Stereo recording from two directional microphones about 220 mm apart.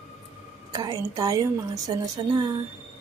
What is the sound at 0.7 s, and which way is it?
A woman's voice, 15° right (ahead or behind).